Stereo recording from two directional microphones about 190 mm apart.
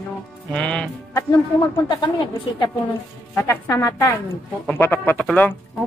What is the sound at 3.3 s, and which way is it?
Speech, 15° left (ahead or behind).